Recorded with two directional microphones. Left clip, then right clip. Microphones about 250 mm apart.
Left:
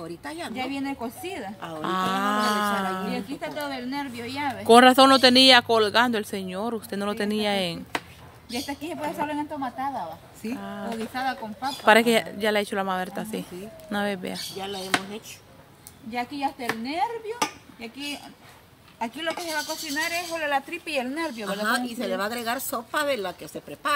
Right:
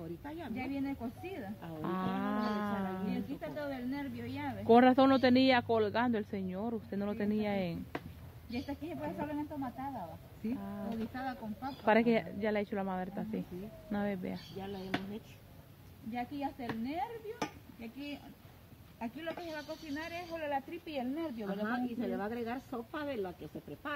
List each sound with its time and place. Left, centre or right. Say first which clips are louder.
0.6 s a woman's voice: left 9 dB; centre
1.6 s speech: left 13 dB; centre
3.3 s speech: left 9 dB; centre
4.6 s speech: left 11 dB; centre
8.5 s a woman's voice: left 10 dB; centre
10.6 s speech: left 10 dB; left
11.1 s a woman's voice: left 12 dB; centre
11.8 s speech: left 11 dB; centre
16.1 s speech: left 11 dB; centre
18.9 s speech: left 12 dB; centre; by 21.5 s left
21.5 s a woman's voice: left 13 dB; left